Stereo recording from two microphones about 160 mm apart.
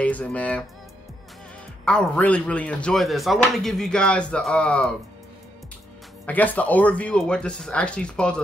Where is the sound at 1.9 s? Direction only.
5° left (ahead or behind).